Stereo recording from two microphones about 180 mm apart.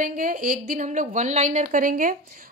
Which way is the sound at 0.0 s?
50° right (ahead or behind).